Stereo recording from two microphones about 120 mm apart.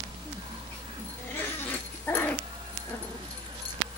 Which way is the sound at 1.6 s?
15° left (ahead or behind).